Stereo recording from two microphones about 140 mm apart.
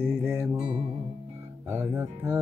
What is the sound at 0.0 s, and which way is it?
Music, 15° right (ahead or behind).